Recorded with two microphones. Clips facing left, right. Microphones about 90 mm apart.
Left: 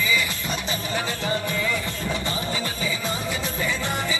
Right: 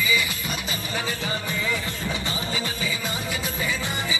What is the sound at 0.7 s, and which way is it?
Music, 35° left (ahead or behind).